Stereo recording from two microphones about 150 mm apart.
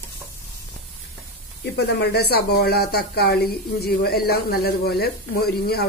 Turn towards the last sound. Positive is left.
turn(degrees=90)